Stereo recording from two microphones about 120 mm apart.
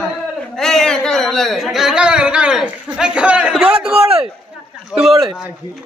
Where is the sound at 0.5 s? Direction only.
5° left (ahead or behind).